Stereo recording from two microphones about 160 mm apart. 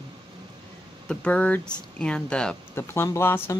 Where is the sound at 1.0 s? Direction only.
10° left (ahead or behind).